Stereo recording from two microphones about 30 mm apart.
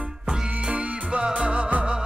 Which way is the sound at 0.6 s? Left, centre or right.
Right.